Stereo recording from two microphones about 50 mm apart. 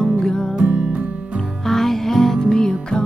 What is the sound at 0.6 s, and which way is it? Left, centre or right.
Music, centre.